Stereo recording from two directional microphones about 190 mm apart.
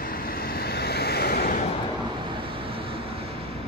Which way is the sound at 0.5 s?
55° left (ahead or behind).